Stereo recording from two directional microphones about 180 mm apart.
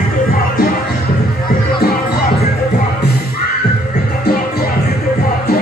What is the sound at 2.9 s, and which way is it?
Music, 60° left (ahead or behind).